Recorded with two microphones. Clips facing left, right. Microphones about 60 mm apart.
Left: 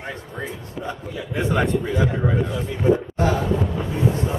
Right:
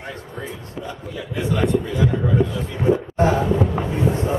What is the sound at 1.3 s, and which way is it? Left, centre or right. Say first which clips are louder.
A man's voice: right 1 dB; left.